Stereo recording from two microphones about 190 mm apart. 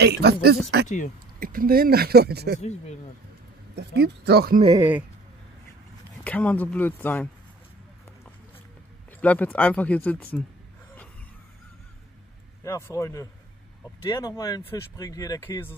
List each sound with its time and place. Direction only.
0.0 s speech: 60° right (ahead or behind)
0.8 s speech: 40° left (ahead or behind)
1.4 s speech: 50° right (ahead or behind)
2.6 s speech: 35° left (ahead or behind)
3.7 s speech: 60° right (ahead or behind)
6.2 s speech: 10° left (ahead or behind)
9.2 s speech: 10° left (ahead or behind)
12.6 s speech: 15° left (ahead or behind)